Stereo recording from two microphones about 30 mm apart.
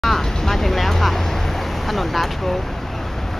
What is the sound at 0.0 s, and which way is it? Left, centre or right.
Vehicle, centre.